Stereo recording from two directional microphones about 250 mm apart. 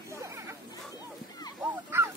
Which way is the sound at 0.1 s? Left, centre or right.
Centre.